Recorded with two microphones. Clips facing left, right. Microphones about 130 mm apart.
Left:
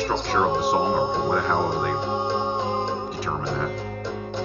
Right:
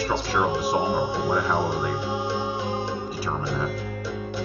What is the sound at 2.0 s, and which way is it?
Music, 25° left (ahead or behind).